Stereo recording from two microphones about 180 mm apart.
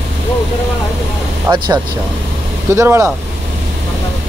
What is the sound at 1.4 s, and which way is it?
Speech, 25° right (ahead or behind).